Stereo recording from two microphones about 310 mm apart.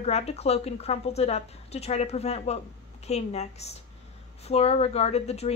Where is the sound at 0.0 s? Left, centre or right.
Left.